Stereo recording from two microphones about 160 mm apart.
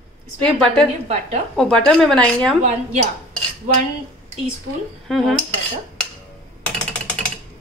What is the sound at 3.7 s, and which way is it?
Cutlery, 55° right (ahead or behind).